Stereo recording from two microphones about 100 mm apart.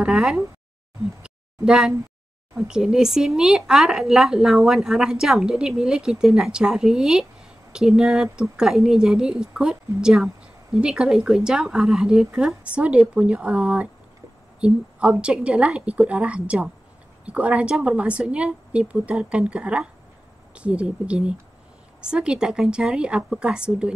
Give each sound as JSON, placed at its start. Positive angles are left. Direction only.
{"t": 0.0, "sound": "speech", "side_deg": -5}
{"t": 1.2, "sound": "a sound", "side_deg": -10}
{"t": 2.5, "sound": "speech", "side_deg": -5}